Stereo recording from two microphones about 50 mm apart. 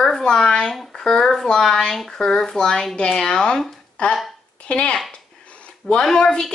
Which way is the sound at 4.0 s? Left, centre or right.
Left.